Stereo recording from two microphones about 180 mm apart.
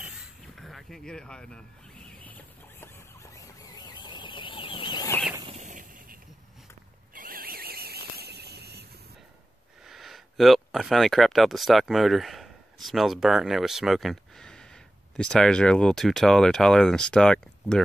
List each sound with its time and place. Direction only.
0.6 s speech: centre (ahead or behind)
2.2 s chicken: 10° left (ahead or behind)
5.5 s snake: 45° right (ahead or behind)
7.2 s squeal: 55° right (ahead or behind)
9.8 s speech: centre (ahead or behind)